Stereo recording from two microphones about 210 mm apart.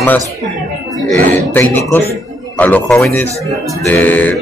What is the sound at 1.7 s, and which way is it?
A man's voice, 10° left (ahead or behind).